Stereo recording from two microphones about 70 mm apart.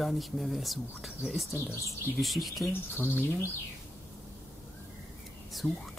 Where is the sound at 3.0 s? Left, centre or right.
Left.